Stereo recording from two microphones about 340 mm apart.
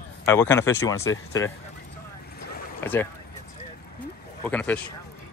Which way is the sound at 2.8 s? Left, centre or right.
Centre.